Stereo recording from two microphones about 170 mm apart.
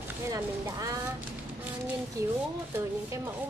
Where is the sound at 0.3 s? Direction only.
20° right (ahead or behind).